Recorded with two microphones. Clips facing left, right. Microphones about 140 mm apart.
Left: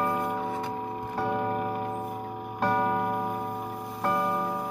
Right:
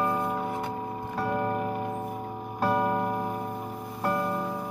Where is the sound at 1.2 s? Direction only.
10° left (ahead or behind).